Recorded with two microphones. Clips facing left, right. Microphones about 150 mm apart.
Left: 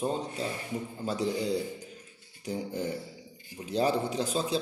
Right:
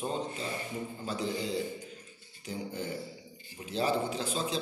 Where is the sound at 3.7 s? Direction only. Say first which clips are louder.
Left 3 dB; 40° left (ahead or behind).